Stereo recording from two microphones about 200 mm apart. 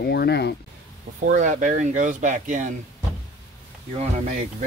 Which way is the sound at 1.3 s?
40° right (ahead or behind).